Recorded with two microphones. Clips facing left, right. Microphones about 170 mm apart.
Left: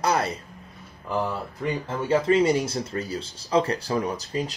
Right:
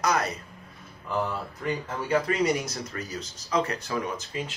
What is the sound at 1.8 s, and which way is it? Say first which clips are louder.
Speech: left 5 dB; 25° left (ahead or behind).